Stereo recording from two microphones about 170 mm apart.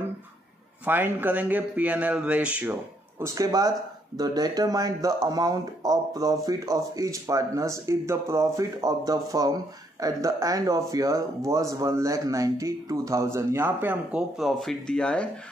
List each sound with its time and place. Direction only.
0.8 s speech: 10° right (ahead or behind); by 15.2 s 5° left (ahead or behind)